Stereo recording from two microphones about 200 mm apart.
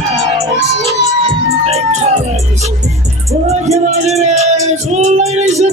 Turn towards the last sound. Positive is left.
turn(degrees=-35)  # may be behind; listen again after turning